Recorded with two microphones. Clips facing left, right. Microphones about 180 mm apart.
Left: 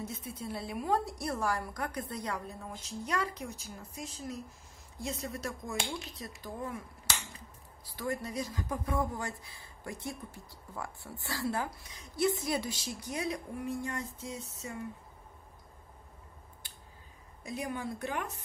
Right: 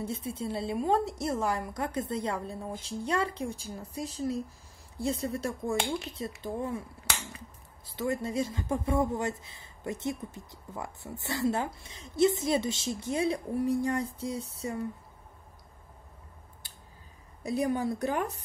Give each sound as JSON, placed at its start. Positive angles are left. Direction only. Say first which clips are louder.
{"t": 0.0, "sound": "a woman's voice", "louder": "right 6 dB", "side_deg": -30}
{"t": 7.1, "sound": "finger snapping", "louder": "right 2 dB", "side_deg": -60}
{"t": 7.8, "sound": "speech", "louder": "right 5 dB", "side_deg": -25}
{"t": 17.4, "sound": "a woman's voice", "louder": "right 9 dB", "side_deg": -35}